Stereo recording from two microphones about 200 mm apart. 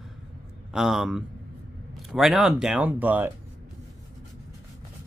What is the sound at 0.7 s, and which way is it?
Speech, centre (ahead or behind).